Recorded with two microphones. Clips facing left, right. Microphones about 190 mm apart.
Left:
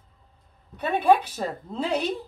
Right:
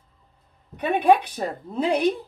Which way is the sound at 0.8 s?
15° right (ahead or behind).